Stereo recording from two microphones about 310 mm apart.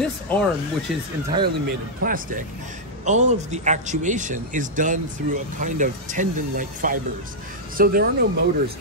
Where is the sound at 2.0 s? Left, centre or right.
Right.